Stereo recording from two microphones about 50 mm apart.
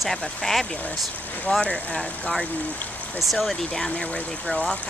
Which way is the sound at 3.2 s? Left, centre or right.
Centre.